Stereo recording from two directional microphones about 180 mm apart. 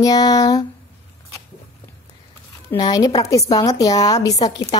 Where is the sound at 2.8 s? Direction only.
20° left (ahead or behind).